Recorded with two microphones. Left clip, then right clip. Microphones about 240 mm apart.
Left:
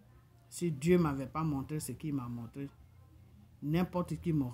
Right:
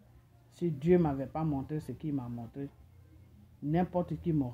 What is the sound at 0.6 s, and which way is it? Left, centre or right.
Speech, left.